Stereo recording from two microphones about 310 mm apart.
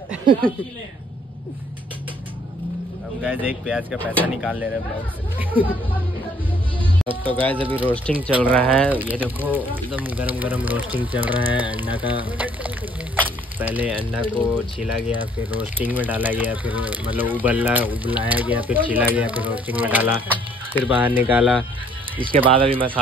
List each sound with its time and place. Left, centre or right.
3.2 s speech: centre
6.8 s music: centre
7.7 s speech: centre
22.2 s speech: centre